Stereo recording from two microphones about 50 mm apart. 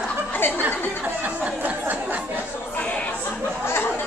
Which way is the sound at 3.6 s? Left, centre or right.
Left.